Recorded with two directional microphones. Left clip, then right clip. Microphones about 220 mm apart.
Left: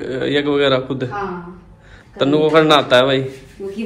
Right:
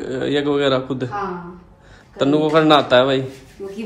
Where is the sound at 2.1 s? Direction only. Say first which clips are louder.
Left 3 dB; 15° right (ahead or behind).